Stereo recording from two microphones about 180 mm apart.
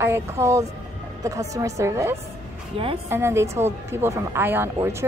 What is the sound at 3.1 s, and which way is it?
A woman's voice, 15° right (ahead or behind).